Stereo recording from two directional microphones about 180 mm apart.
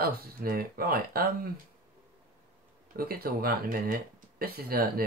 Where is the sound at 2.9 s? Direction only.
55° right (ahead or behind).